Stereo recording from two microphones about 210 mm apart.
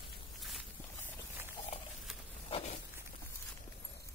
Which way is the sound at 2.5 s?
30° left (ahead or behind).